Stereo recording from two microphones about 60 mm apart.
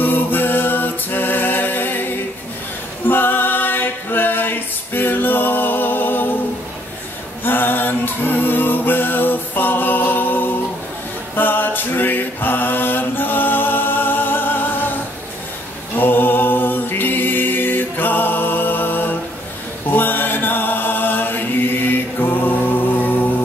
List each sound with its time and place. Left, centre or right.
0.0 s music: left
3.1 s music: left
7.4 s music: left
11.3 s a sound: left
16.0 s music: left
19.9 s mantra: left
22.2 s music: left